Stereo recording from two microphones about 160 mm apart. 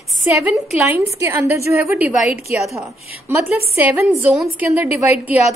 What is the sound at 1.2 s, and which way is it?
A woman's voice, 15° right (ahead or behind).